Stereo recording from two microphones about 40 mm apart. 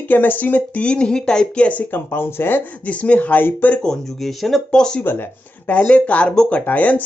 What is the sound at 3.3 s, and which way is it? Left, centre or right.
Speech, left.